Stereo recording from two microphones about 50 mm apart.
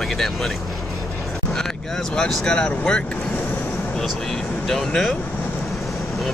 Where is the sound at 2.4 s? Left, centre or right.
Centre.